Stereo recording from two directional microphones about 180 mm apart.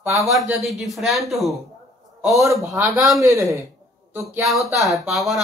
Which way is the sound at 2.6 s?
20° right (ahead or behind).